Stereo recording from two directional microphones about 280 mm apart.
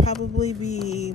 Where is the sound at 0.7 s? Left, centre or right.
Left.